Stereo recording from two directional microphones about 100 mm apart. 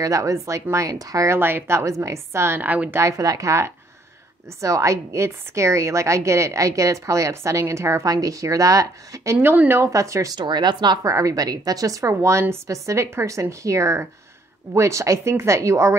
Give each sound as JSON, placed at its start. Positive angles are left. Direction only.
{"t": 0.0, "sound": "speech", "side_deg": -35}
{"t": 3.0, "sound": "a woman's voice", "side_deg": -35}
{"t": 10.3, "sound": "speech", "side_deg": -45}
{"t": 11.0, "sound": "a woman's voice", "side_deg": -30}